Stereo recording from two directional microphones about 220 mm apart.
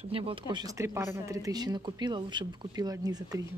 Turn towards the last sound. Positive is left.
turn(degrees=-15)  # may be behind; listen again after turning